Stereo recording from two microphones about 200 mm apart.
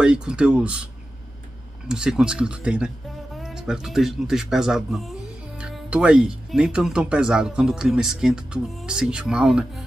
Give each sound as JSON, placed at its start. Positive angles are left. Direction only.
{"t": 0.0, "sound": "speech", "side_deg": -5}
{"t": 1.9, "sound": "speech", "side_deg": -5}